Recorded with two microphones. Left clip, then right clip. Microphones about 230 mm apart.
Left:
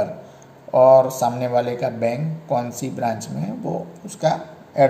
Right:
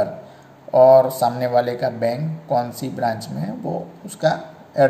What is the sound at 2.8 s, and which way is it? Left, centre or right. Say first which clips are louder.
Speech: even; left.